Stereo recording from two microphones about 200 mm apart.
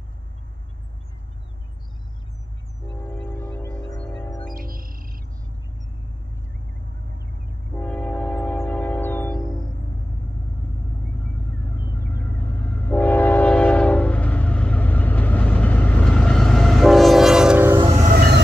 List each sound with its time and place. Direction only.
3.0 s music: 10° left (ahead or behind)
4.6 s music: 45° right (ahead or behind)
7.7 s train: 10° left (ahead or behind)
12.3 s train: 10° left (ahead or behind); by 17.9 s 15° right (ahead or behind)